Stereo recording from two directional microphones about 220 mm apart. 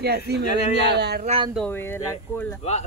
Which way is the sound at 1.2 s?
25° right (ahead or behind).